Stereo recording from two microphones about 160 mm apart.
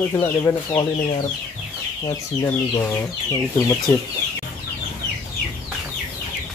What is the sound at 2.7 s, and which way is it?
Speech, 20° left (ahead or behind).